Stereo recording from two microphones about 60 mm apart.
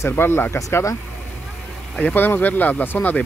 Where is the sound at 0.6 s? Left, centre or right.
Left.